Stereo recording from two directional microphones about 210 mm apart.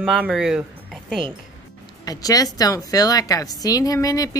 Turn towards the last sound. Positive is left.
turn(degrees=15)  # may be behind; listen again after turning